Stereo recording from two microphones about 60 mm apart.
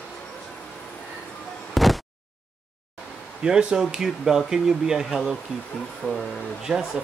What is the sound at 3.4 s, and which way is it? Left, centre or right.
Speech, centre.